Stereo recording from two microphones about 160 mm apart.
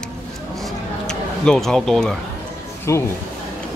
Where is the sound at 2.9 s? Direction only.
15° left (ahead or behind).